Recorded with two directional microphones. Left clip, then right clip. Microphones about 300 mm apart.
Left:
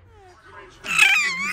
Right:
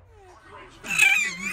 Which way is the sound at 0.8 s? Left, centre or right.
Centre.